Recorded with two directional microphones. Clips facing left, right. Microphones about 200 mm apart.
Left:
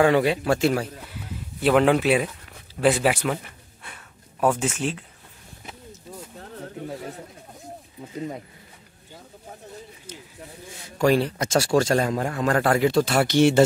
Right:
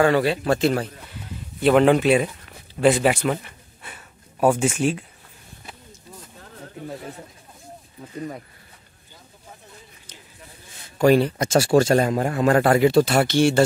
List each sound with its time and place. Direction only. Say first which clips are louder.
0.0 s a man's voice: even; 15° left (ahead or behind)
3.8 s a sound: right 2 dB; 10° right (ahead or behind)
8.1 s speech: even; 20° left (ahead or behind)
11.0 s speech: right 4 dB; 5° right (ahead or behind)
13.3 s speech: left 1 dB; 20° left (ahead or behind)